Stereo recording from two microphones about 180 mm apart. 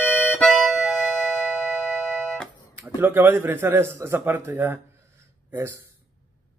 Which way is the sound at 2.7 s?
15° right (ahead or behind).